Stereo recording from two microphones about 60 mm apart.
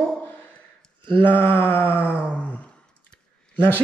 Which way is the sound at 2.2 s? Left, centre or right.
Left.